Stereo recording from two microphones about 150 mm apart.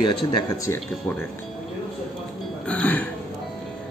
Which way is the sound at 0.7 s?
15° left (ahead or behind).